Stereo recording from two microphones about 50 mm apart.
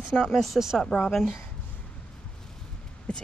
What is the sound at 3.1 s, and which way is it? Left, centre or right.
Speech, centre.